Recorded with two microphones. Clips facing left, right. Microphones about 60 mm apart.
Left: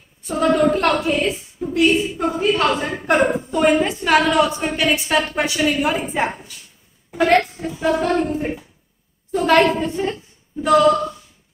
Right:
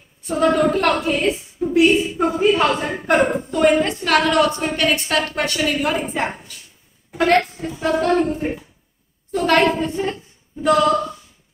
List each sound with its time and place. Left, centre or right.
0.2 s a woman's voice: centre